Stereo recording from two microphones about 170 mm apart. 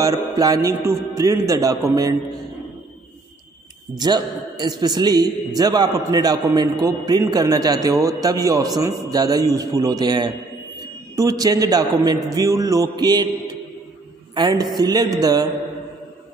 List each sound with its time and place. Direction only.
0.0 s a man's voice: 20° right (ahead or behind)
3.9 s a man's voice: 25° right (ahead or behind)